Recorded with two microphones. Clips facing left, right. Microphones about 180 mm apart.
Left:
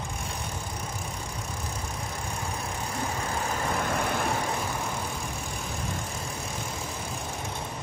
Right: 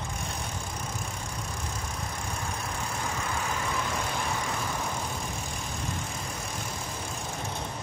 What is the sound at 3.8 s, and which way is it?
Vehicle, 55° left (ahead or behind).